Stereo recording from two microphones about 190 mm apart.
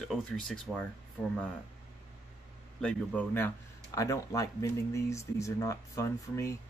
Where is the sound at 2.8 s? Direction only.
10° left (ahead or behind).